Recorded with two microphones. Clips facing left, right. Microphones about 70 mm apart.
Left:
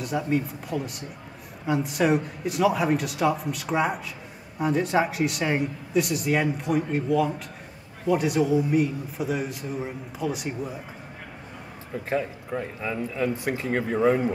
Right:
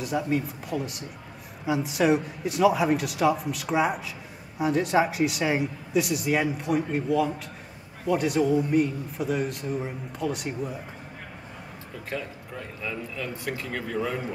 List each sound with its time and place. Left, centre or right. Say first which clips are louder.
0.0 s speech: left 1 dB; centre
12.1 s speech: left 7 dB; left